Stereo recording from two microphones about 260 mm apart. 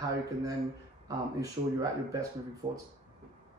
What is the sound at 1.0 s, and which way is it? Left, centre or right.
Speech, centre.